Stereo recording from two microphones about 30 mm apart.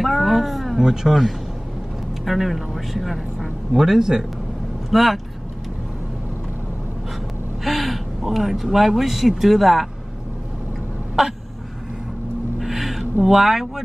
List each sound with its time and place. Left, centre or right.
0.0 s a sound: centre
0.7 s speech: right
2.2 s speech: centre
3.7 s speech: centre
4.9 s speech: centre
7.6 s speech: centre
11.2 s speech: centre
12.5 s a sound: centre
13.3 s speech: centre